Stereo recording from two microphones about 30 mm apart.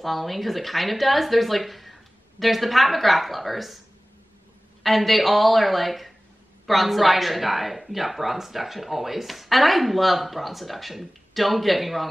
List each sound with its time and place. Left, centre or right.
0.0 s speech: centre
4.8 s speech: centre